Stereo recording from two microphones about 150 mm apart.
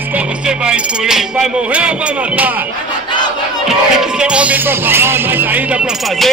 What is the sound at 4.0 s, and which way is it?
Music, 5° right (ahead or behind).